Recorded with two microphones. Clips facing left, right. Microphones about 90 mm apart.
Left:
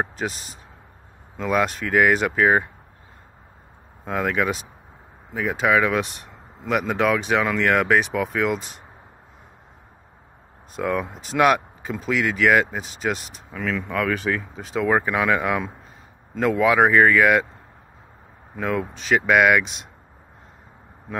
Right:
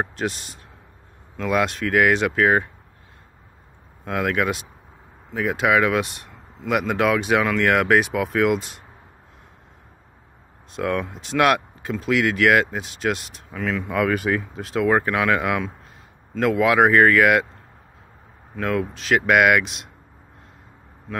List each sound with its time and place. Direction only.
0.0 s speech: centre (ahead or behind)
4.0 s speech: centre (ahead or behind)
10.8 s speech: 5° left (ahead or behind)
18.6 s speech: 5° left (ahead or behind)